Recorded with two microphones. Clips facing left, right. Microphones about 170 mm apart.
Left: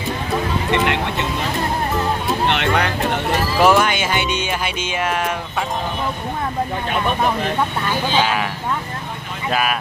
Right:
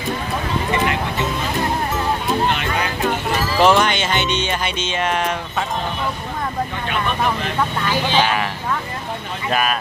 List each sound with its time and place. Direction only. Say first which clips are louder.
0.7 s speech: left 1 dB; 70° left (ahead or behind)
2.5 s music: left 4 dB; 65° left (ahead or behind)
3.5 s music: even; 5° left (ahead or behind)
8.1 s speech: even; 5° left (ahead or behind)
9.5 s speech: even; 5° left (ahead or behind)